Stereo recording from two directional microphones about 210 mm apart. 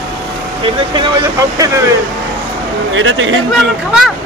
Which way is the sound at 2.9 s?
65° right (ahead or behind).